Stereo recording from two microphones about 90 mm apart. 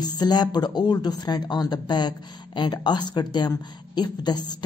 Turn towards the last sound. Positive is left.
turn(degrees=50)  # may be behind; listen again after turning